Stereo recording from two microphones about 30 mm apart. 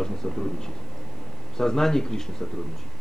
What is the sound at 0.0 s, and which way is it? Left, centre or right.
Speech, centre.